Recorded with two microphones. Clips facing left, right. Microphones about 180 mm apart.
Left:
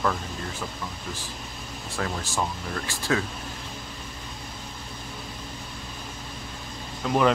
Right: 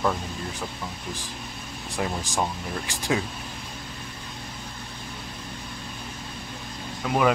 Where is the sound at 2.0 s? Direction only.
15° right (ahead or behind).